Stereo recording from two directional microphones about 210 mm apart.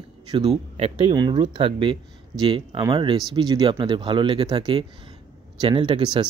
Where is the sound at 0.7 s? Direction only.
25° right (ahead or behind).